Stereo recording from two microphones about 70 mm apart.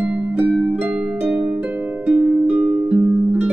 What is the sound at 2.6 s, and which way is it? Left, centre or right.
Music, centre.